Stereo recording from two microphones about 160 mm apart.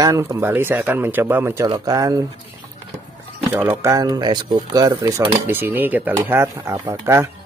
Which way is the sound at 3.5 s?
15° right (ahead or behind).